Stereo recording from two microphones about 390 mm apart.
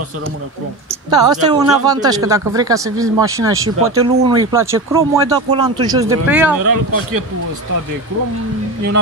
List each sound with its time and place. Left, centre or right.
1.1 s speech: centre